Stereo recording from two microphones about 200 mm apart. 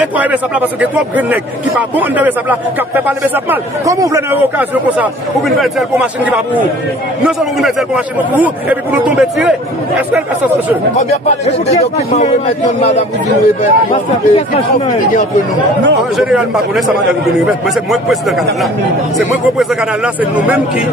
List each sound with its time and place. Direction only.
0.0 s a man's voice: 10° right (ahead or behind)
3.4 s a man's voice: 15° right (ahead or behind)
7.2 s a man's voice: 5° right (ahead or behind)
11.2 s a man's voice: 35° left (ahead or behind)
16.2 s a man's voice: centre (ahead or behind)